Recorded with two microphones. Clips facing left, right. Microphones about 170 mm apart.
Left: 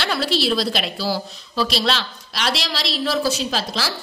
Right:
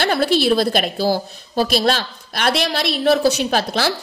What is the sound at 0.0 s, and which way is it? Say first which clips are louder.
A woman's voice: right 5 dB; 55° right (ahead or behind).